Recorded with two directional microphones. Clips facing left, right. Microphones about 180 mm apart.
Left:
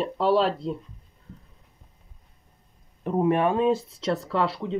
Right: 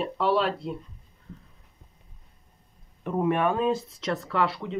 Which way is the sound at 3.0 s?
35° left (ahead or behind).